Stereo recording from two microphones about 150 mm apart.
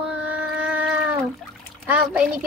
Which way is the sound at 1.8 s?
5° right (ahead or behind).